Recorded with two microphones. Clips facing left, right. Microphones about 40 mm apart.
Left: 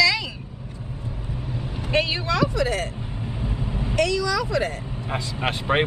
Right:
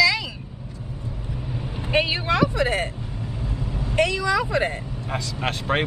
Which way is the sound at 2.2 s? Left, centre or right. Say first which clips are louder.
Right 1 dB; right.